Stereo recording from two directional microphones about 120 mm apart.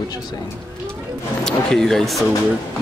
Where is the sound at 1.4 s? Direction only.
5° left (ahead or behind).